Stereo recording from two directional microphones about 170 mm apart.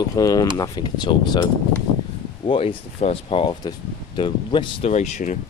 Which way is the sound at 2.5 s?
35° left (ahead or behind).